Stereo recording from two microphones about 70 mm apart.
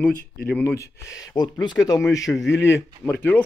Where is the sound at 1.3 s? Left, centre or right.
Left.